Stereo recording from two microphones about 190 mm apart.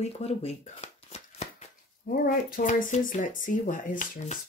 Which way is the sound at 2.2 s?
45° left (ahead or behind).